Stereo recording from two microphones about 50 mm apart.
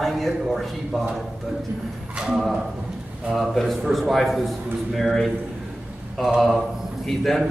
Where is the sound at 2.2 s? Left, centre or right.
Centre.